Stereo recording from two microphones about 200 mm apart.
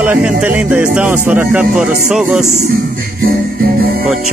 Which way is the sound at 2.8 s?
50° right (ahead or behind).